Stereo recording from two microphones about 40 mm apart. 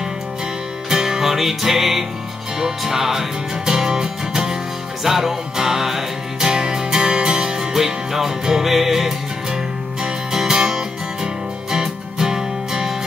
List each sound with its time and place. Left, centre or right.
0.8 s music: centre